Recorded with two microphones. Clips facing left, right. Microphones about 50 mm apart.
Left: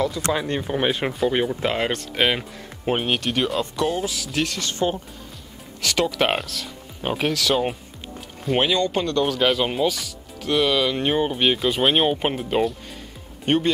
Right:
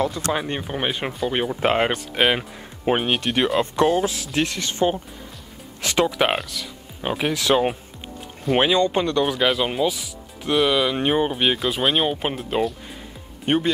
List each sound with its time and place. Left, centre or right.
0.3 s speech: centre
1.3 s speech: centre
1.6 s speech: right
1.9 s speech: centre
3.7 s speech: right
6.2 s speech: centre
7.2 s speech: centre
9.4 s speech: centre
10.0 s speech: centre
13.5 s speech: centre